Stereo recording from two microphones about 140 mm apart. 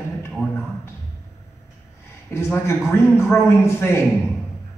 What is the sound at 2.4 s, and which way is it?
A man's voice, 20° left (ahead or behind).